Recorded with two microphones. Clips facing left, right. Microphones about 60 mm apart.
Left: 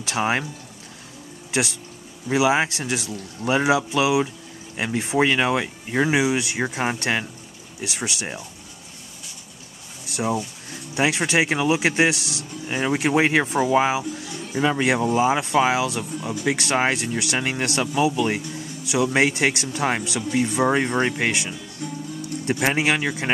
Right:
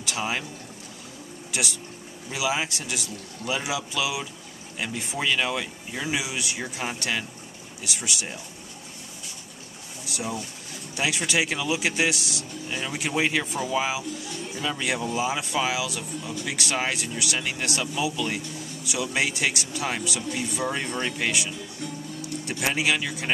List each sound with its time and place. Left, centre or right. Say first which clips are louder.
0.0 s speech: left 6 dB; left
2.2 s speech: left 8 dB; left
10.0 s speech: left 7 dB; left